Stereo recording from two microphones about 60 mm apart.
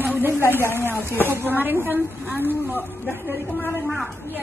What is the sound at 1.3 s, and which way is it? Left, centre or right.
Speech, right.